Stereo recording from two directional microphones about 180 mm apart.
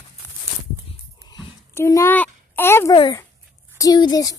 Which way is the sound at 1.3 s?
20° left (ahead or behind).